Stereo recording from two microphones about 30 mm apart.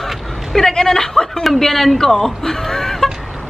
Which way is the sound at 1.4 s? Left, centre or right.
Centre.